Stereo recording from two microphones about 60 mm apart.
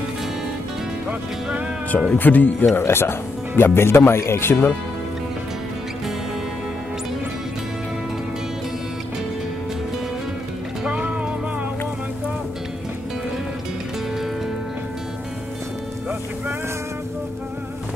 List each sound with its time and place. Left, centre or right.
2.0 s speech: left
10.9 s music: right